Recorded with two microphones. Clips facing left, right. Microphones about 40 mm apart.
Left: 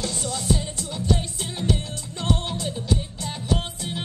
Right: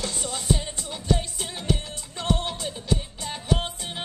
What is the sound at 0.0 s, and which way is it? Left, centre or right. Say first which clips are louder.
Music: left 2 dB; right.